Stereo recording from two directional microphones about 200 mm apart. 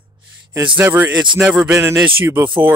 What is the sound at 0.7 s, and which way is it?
Speech, 10° right (ahead or behind).